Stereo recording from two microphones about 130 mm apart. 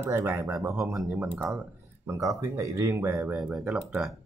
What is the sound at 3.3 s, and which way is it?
Speech, centre (ahead or behind).